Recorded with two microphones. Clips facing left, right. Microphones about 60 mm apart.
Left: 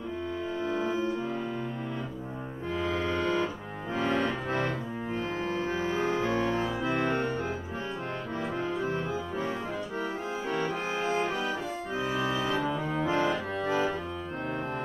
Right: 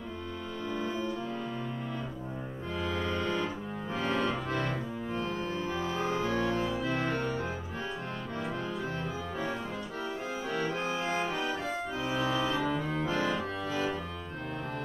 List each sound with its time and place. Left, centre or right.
0.7 s music: left
3.9 s organ: left
7.0 s music: left
10.5 s accordion: left
12.2 s organ: left
12.6 s music: left